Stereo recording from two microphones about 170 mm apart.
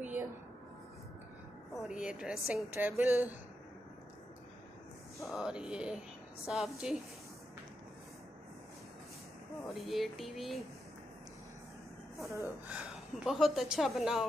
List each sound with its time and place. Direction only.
1.7 s speech: 5° right (ahead or behind)
5.2 s a woman's voice: centre (ahead or behind)
9.8 s a woman's voice: centre (ahead or behind)
12.2 s speech: 15° right (ahead or behind)
12.7 s a woman's voice: centre (ahead or behind)